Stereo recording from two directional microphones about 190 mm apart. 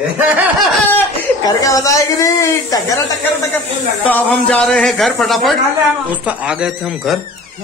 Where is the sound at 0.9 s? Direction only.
15° left (ahead or behind).